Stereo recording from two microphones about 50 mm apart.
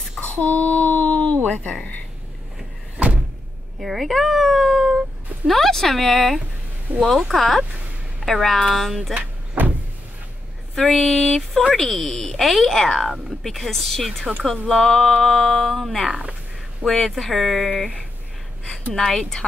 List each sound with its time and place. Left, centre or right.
0.2 s a sound: left
3.8 s speech: centre
5.5 s speech: centre
6.9 s speech: right
7.3 s speech: centre
9.6 s vehicle: right
10.7 s speech: centre
16.1 s speech: right
16.8 s speech: centre
18.7 s speech: centre